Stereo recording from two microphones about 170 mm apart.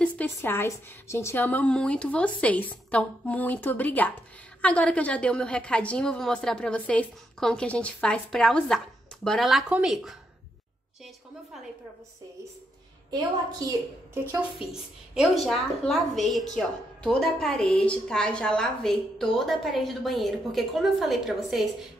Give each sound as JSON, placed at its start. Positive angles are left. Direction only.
{"t": 0.0, "sound": "a woman's voice", "side_deg": 10}
{"t": 13.6, "sound": "a woman's voice", "side_deg": -20}
{"t": 14.7, "sound": "a woman's voice", "side_deg": 0}